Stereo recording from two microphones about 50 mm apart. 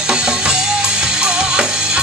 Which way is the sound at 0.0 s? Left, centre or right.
Centre.